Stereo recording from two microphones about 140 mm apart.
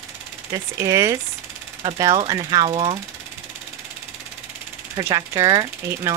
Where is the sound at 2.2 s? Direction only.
30° right (ahead or behind).